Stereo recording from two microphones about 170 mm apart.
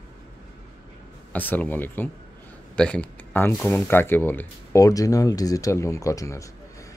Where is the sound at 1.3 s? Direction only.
10° left (ahead or behind).